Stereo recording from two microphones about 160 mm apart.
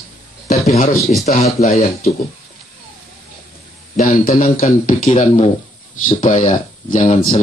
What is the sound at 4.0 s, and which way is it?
Speech, 60° left (ahead or behind).